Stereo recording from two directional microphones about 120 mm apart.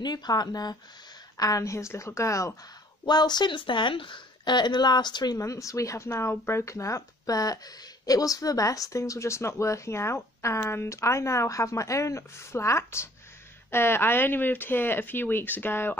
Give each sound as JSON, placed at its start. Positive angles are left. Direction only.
{"t": 0.0, "sound": "speech", "side_deg": 35}
{"t": 3.1, "sound": "speech", "side_deg": 35}